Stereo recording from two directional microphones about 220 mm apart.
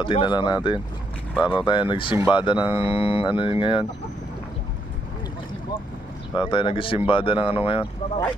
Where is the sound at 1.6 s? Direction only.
20° left (ahead or behind).